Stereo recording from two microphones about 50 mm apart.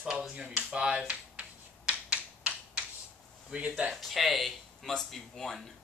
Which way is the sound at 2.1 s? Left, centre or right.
Right.